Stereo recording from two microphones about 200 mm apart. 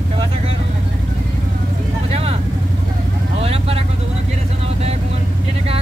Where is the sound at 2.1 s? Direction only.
30° right (ahead or behind).